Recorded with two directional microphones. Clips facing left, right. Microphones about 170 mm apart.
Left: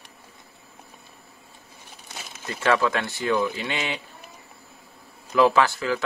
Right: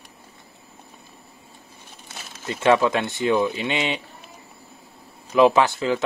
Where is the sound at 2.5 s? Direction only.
20° right (ahead or behind).